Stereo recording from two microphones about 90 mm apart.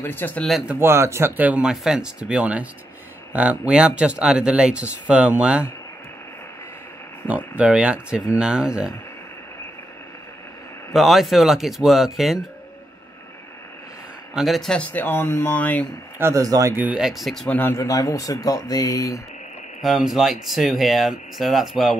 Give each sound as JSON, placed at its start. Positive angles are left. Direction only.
{"t": 0.0, "sound": "speech", "side_deg": 25}
{"t": 0.4, "sound": "speech", "side_deg": 0}
{"t": 0.7, "sound": "speech", "side_deg": -30}
{"t": 7.2, "sound": "speech", "side_deg": -15}
{"t": 10.9, "sound": "speech", "side_deg": 0}
{"t": 14.3, "sound": "speech", "side_deg": 0}
{"t": 14.9, "sound": "speech", "side_deg": 20}
{"t": 16.2, "sound": "speech", "side_deg": -30}
{"t": 16.4, "sound": "speech", "side_deg": -40}
{"t": 16.7, "sound": "speech", "side_deg": -15}
{"t": 17.0, "sound": "speech", "side_deg": 0}
{"t": 17.5, "sound": "speech", "side_deg": 25}
{"t": 17.8, "sound": "speech", "side_deg": 40}
{"t": 19.8, "sound": "speech", "side_deg": 0}